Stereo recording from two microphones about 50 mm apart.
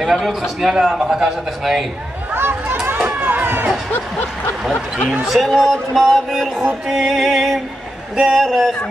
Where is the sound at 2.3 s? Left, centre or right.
Right.